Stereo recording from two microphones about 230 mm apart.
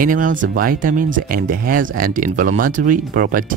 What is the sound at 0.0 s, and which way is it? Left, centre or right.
Speech, right.